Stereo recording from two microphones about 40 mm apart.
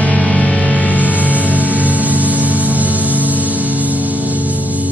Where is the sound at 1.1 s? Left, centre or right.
Right.